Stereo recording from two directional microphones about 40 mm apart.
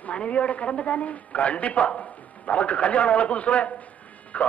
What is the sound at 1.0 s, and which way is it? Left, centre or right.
A man's voice, left.